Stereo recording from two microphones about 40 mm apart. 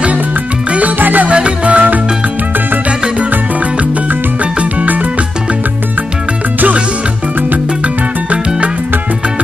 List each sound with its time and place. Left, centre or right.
0.7 s music: right
0.9 s music: right
1.3 s music: right